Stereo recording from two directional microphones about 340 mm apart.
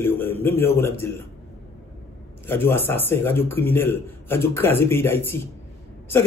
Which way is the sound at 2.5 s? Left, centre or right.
Centre.